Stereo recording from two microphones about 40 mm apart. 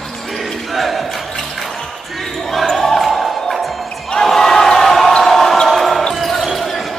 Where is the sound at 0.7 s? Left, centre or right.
Centre.